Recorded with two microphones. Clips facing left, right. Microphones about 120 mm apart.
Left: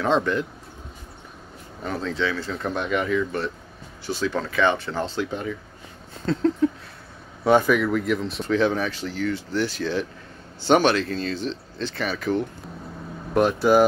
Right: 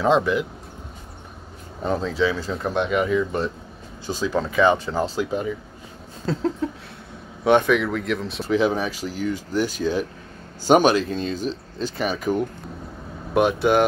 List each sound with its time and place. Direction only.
0.0 s speech: 10° right (ahead or behind)
1.8 s speech: 20° right (ahead or behind)
2.0 s speech: 10° right (ahead or behind)
7.4 s speech: 5° left (ahead or behind); by 12.4 s 15° right (ahead or behind)
13.3 s speech: centre (ahead or behind)